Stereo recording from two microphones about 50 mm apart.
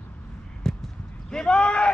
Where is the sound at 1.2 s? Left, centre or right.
Centre.